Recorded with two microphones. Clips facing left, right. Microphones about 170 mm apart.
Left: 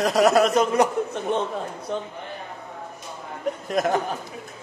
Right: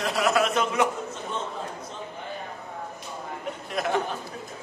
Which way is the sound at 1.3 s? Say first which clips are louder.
Left 9 dB; 65° left (ahead or behind).